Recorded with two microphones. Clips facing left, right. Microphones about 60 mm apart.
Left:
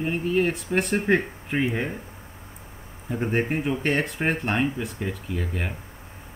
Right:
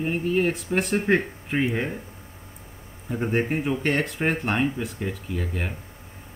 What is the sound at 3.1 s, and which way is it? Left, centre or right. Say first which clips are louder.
Speech: even; centre.